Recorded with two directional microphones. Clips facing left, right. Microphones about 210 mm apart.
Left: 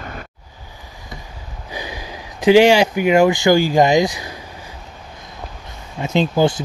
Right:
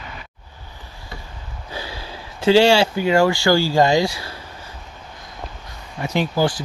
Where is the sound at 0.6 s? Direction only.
15° left (ahead or behind).